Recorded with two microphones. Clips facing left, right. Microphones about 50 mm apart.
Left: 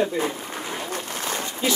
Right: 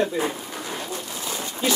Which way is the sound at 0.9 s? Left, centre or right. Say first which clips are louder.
Left 2 dB; left.